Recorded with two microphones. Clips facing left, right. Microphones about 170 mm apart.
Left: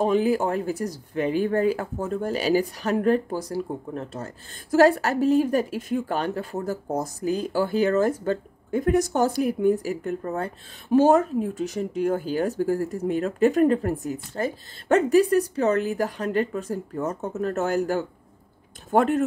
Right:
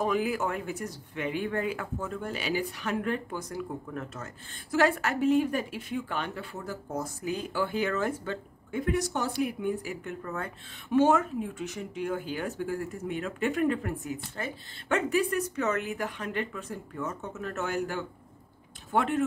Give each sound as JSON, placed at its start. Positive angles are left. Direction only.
{"t": 0.0, "sound": "speech", "side_deg": 30}